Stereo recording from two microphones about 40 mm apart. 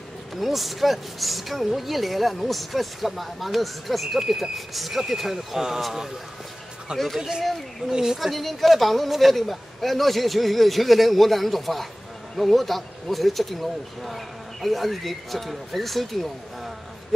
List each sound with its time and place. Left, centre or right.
0.4 s a woman's voice: centre
7.2 s speech: centre
8.2 s a woman's voice: centre